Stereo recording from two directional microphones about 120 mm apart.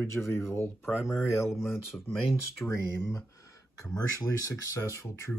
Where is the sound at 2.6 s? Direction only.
20° left (ahead or behind).